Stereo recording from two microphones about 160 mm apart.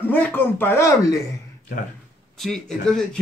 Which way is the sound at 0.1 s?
15° left (ahead or behind).